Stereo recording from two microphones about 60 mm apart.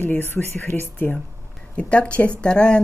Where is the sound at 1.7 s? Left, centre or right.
Left.